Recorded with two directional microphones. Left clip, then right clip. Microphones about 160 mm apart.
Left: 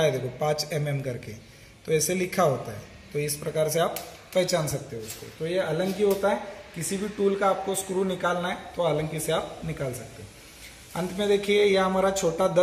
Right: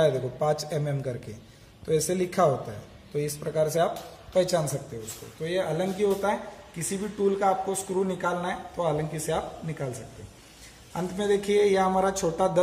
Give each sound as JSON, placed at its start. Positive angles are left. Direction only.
{"t": 0.0, "sound": "a man's voice", "side_deg": -20}
{"t": 10.9, "sound": "speech", "side_deg": -15}